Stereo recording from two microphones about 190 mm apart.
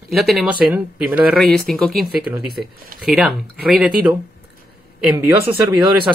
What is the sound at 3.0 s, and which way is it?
Speech, centre (ahead or behind).